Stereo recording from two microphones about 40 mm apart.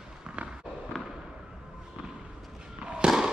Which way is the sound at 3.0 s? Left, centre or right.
Centre.